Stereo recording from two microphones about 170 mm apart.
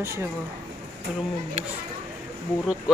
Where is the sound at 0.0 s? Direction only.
15° right (ahead or behind).